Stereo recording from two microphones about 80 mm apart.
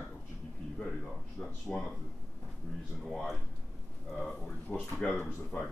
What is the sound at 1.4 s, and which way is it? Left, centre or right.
Speech, centre.